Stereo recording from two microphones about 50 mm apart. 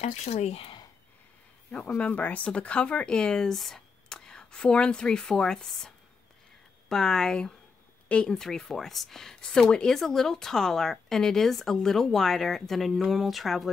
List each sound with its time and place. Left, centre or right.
2.0 s speech: left
8.4 s speech: centre